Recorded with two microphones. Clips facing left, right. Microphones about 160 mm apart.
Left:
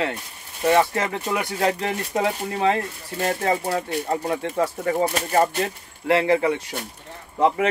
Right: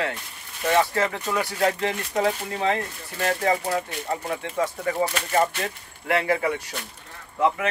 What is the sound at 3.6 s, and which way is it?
Speech, 35° left (ahead or behind).